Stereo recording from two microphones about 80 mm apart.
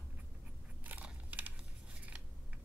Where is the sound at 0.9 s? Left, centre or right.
Right.